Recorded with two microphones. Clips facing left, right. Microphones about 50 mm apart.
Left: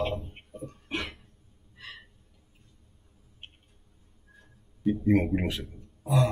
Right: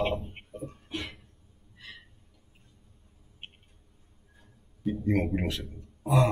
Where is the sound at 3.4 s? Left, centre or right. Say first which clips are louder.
Right 2 dB; right.